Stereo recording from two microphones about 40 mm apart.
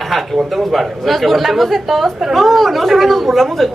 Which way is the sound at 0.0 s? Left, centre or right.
Centre.